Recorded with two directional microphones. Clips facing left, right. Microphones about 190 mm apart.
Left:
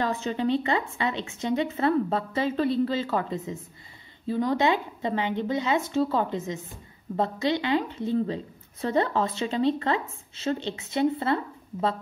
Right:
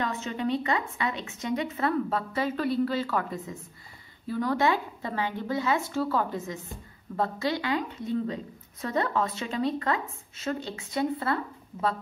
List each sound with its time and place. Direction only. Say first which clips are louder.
0.0 s a woman's voice: left 3 dB; 30° left (ahead or behind)